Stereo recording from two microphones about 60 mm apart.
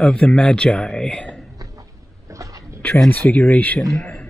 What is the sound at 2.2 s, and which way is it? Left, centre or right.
Dog, right.